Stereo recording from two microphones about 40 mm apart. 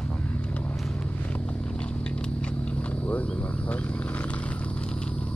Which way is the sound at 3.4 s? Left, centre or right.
Left.